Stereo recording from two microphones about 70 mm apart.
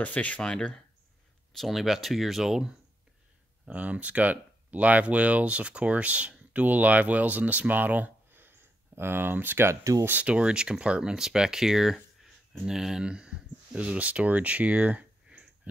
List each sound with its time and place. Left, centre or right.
0.0 s speech: left
1.5 s speech: centre
3.6 s speech: right
10.0 s speech: right